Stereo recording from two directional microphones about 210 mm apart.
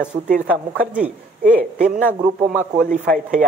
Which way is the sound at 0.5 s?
5° right (ahead or behind).